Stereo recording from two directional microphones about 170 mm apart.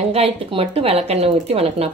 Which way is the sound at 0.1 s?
35° right (ahead or behind).